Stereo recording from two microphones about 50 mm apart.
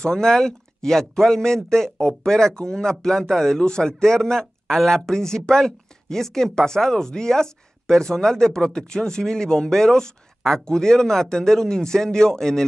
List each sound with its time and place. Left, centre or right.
0.0 s speech: centre